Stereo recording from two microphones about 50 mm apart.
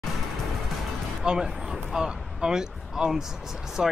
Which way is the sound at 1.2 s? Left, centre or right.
Centre.